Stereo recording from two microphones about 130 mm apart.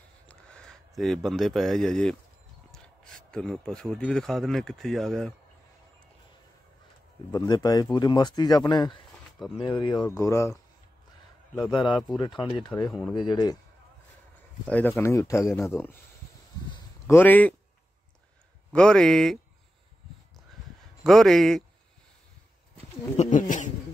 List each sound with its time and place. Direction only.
0.3 s speech: 5° left (ahead or behind)
7.2 s speech: 30° left (ahead or behind)
10.1 s speech: 25° left (ahead or behind)
11.7 s speech: 35° left (ahead or behind)
14.7 s a man's voice: 15° left (ahead or behind)
17.1 s a man's voice: 15° left (ahead or behind)
18.7 s speech: 5° left (ahead or behind)
21.0 s speech: centre (ahead or behind)
23.1 s bird: 80° left